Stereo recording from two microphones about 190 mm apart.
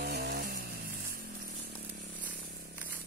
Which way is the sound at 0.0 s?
55° right (ahead or behind).